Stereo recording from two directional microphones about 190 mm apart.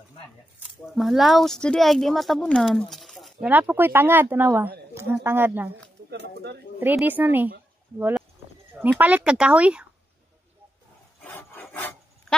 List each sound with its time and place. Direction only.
0.9 s speech: centre (ahead or behind)
2.9 s a sound: centre (ahead or behind)
3.4 s speech: 10° right (ahead or behind)
6.0 s speech: 60° right (ahead or behind)
6.8 s speech: 10° right (ahead or behind)
8.7 s speech: 10° right (ahead or behind)
11.2 s rub: 10° left (ahead or behind)